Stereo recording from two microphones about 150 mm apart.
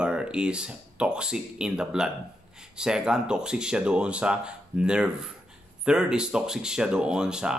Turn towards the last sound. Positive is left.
turn(degrees=-5)  # may be behind; listen again after turning